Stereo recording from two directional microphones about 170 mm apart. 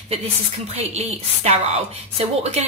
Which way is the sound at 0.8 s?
40° right (ahead or behind).